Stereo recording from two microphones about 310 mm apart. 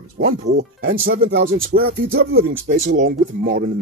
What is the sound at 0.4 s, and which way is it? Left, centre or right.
Speech, right.